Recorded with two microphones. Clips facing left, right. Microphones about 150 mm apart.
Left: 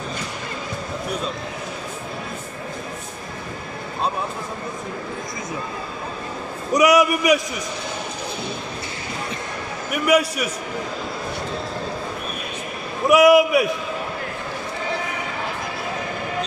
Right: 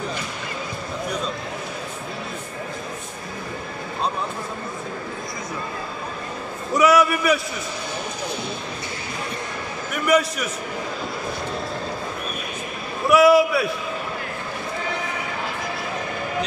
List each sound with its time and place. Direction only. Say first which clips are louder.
6.7 s a man's voice: left 1 dB; 15° left (ahead or behind)
10.0 s a man's voice: left 1 dB; 10° left (ahead or behind)
13.1 s a man's voice: left 1 dB; 15° left (ahead or behind)